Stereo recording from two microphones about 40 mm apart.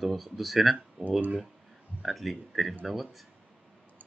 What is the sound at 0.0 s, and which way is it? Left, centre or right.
Speech, centre.